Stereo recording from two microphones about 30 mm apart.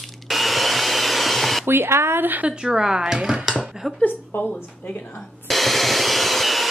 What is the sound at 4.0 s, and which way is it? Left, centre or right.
A woman's voice, left.